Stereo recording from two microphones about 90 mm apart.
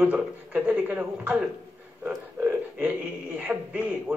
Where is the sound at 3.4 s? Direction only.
15° right (ahead or behind).